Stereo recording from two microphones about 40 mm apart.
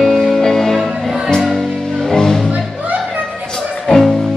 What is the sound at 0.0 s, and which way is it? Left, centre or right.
Music, centre.